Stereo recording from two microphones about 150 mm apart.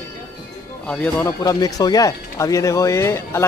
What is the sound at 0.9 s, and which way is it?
Speech, 5° left (ahead or behind).